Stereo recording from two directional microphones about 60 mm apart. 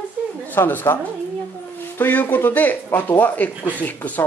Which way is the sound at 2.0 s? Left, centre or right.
Left.